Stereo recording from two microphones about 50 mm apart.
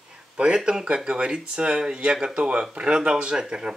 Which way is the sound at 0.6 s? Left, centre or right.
Centre.